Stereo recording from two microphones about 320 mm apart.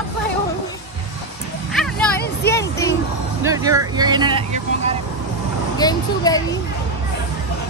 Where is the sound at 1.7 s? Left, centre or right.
Centre.